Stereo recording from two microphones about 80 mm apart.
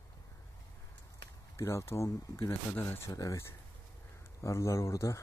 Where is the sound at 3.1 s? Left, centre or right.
Left.